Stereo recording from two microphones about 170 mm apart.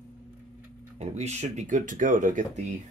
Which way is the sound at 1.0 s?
40° right (ahead or behind).